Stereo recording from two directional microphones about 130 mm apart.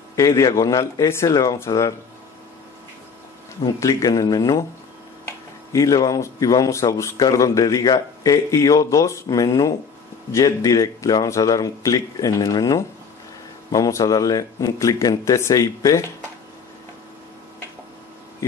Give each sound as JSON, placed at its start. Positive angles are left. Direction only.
{"t": 0.1, "sound": "a man's voice", "side_deg": 25}
{"t": 3.6, "sound": "a man's voice", "side_deg": 30}
{"t": 5.7, "sound": "a man's voice", "side_deg": 30}